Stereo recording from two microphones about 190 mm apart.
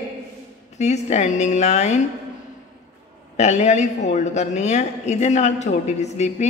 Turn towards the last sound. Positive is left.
turn(degrees=35)  # may be behind; listen again after turning